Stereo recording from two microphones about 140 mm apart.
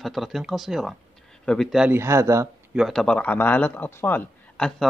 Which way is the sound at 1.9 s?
20° right (ahead or behind).